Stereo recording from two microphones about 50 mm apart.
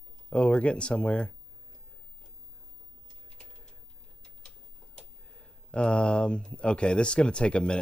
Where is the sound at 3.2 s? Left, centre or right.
Centre.